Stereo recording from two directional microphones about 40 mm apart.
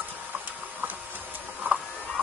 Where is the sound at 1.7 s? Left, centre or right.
Right.